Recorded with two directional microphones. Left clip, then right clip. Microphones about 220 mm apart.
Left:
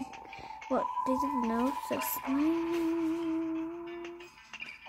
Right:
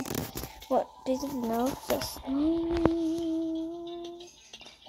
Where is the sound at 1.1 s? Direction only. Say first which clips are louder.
Right 4 dB; 25° left (ahead or behind).